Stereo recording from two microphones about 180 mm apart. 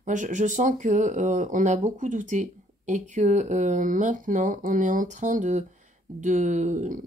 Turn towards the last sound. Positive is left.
turn(degrees=-45)  # may be behind; listen again after turning